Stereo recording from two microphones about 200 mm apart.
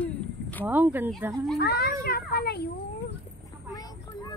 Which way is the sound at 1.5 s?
50° left (ahead or behind).